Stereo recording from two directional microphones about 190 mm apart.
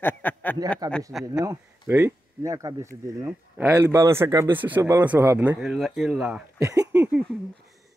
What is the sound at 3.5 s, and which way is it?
A man's voice, 5° right (ahead or behind).